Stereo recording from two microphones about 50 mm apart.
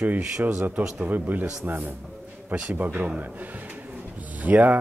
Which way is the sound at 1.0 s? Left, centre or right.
Right.